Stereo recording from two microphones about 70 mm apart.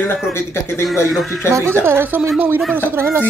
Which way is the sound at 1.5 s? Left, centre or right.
Right.